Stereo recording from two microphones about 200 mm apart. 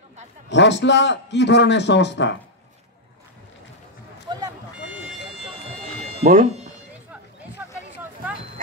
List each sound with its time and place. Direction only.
0.5 s a man's voice: 60° left (ahead or behind)
6.2 s speech: 40° right (ahead or behind)
7.6 s a sound: 10° right (ahead or behind)